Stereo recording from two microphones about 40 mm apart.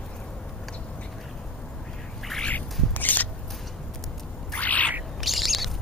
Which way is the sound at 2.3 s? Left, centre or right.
Centre.